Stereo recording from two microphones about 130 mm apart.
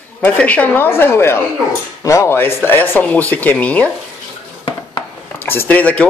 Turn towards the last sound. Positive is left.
turn(degrees=10)  # may be behind; listen again after turning